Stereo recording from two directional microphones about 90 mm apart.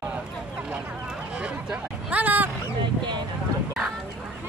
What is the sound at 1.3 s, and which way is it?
Speech, 10° right (ahead or behind).